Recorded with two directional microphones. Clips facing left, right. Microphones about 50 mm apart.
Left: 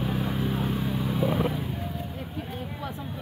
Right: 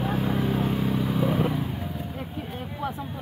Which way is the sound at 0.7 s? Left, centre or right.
Right.